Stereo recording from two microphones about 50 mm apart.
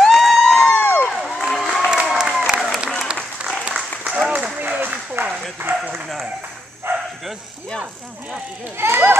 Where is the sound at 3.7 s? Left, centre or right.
Centre.